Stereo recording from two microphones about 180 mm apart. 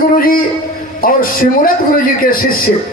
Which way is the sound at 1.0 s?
50° left (ahead or behind).